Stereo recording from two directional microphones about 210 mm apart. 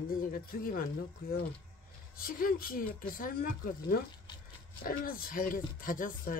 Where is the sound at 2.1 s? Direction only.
45° left (ahead or behind).